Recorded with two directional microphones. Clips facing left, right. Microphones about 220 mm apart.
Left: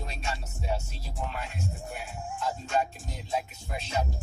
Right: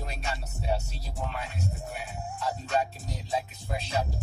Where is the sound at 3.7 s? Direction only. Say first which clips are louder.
Right 1 dB; 35° right (ahead or behind).